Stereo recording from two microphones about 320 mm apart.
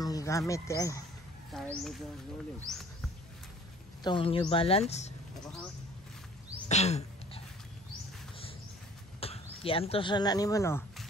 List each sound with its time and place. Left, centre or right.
0.0 s speech: centre
4.0 s a woman's voice: centre
6.7 s throat clearing: centre
9.2 s speech: centre